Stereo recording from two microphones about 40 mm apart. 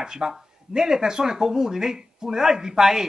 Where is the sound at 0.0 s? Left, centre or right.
Centre.